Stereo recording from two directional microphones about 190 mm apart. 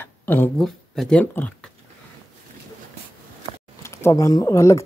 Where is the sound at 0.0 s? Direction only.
10° left (ahead or behind).